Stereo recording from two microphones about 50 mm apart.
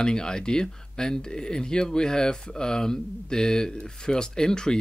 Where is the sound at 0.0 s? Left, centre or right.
Centre.